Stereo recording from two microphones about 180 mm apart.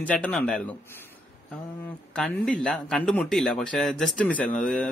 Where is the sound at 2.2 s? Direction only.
5° left (ahead or behind).